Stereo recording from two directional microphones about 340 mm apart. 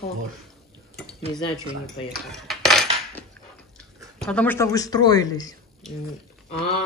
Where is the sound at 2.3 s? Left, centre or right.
Centre.